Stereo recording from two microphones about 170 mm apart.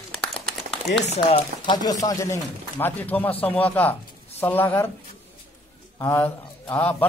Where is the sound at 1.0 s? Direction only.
40° left (ahead or behind).